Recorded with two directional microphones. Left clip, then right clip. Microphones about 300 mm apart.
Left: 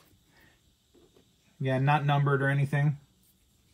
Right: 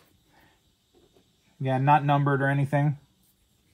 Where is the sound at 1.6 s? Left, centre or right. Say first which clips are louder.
Right 6 dB; centre.